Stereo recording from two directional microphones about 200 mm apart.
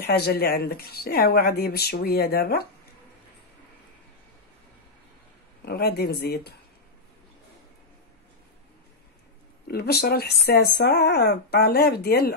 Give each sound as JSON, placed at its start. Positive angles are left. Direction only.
{"t": 0.0, "sound": "speech", "side_deg": 55}
{"t": 5.7, "sound": "speech", "side_deg": 50}
{"t": 9.7, "sound": "speech", "side_deg": 55}